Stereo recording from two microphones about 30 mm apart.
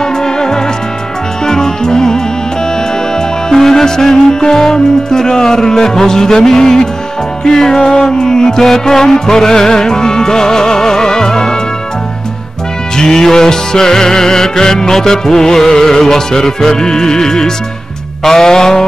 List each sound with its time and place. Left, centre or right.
0.0 s music: left
12.9 s music: centre